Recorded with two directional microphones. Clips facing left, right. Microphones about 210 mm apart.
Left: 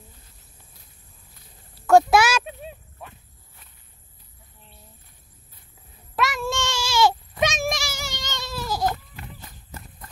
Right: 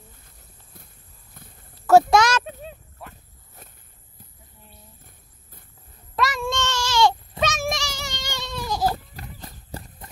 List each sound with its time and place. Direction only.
1.8 s a sound: centre (ahead or behind)
3.6 s walk: 45° right (ahead or behind)
6.1 s a sound: centre (ahead or behind)
7.7 s child singing: 5° left (ahead or behind)
8.2 s baby cry: 10° right (ahead or behind)
8.5 s goat: 5° left (ahead or behind)
8.8 s goat: 35° right (ahead or behind)